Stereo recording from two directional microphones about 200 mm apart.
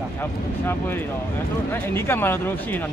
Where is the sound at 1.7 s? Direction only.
10° left (ahead or behind).